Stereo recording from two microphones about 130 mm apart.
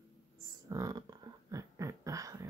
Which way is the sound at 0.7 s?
25° right (ahead or behind).